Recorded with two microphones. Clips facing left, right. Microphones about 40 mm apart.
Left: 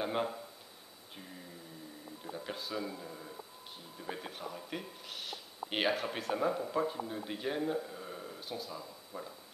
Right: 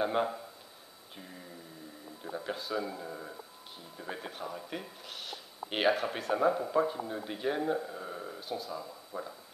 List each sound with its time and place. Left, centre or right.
0.0 s speech: centre
2.4 s speech: centre
3.0 s speech: centre
4.0 s speech: centre
8.4 s speech: centre